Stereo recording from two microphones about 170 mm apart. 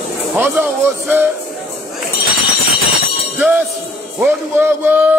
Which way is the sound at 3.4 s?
5° right (ahead or behind).